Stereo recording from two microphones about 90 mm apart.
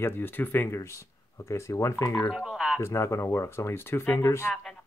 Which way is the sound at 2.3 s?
5° right (ahead or behind).